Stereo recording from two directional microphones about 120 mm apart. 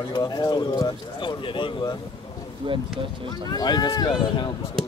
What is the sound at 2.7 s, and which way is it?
Speech, 45° right (ahead or behind).